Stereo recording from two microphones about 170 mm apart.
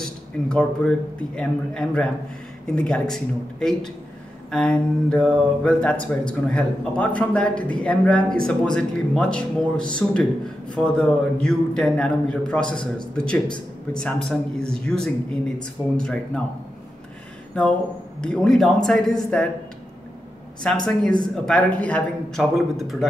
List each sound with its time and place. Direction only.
0.0 s speech: 5° left (ahead or behind)
18.2 s speech: 5° left (ahead or behind)
20.6 s speech: 5° left (ahead or behind)